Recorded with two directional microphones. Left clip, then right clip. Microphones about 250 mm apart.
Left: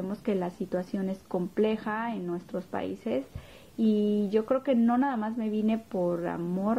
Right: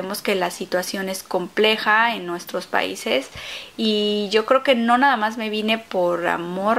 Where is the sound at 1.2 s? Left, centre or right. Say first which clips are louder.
Right 8 dB; centre.